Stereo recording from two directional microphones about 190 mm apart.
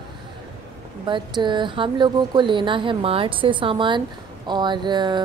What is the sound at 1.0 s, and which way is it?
Speech, 25° right (ahead or behind).